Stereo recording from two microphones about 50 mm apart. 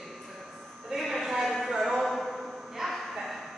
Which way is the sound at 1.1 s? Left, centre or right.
Centre.